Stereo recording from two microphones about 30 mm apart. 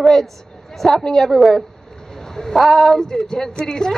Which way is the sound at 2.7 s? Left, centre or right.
Centre.